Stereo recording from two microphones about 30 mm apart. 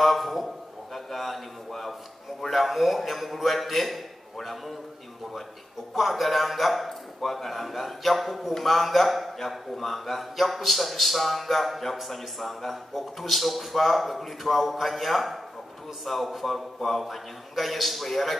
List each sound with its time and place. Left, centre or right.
0.0 s a man's voice: centre
5.9 s speech: centre